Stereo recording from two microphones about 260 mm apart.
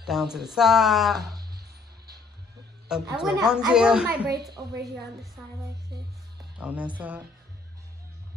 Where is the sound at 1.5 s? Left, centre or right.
Right.